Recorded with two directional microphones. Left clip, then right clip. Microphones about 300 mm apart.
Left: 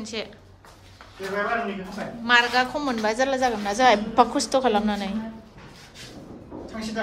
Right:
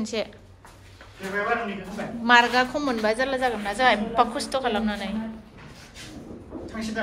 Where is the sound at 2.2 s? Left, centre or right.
Centre; by 5.0 s left.